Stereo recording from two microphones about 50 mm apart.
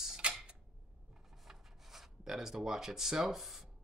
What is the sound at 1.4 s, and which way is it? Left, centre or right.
Speech, centre.